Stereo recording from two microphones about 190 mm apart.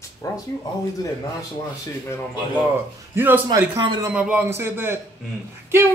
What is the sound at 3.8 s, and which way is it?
Speech, 25° right (ahead or behind).